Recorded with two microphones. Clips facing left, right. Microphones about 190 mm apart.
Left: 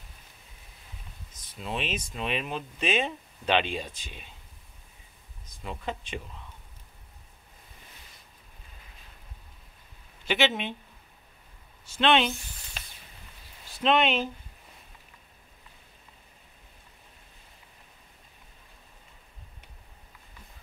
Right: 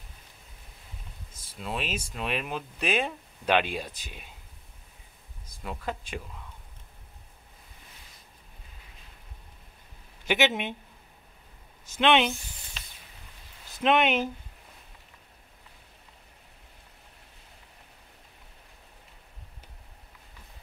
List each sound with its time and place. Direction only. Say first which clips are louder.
1.6 s speech: even; 5° right (ahead or behind)
5.6 s speech: even; 5° right (ahead or behind)
10.2 s speech: right 1 dB; 15° right (ahead or behind)
12.0 s speech: right 1 dB; 15° right (ahead or behind)
13.8 s speech: right 1 dB; 10° right (ahead or behind)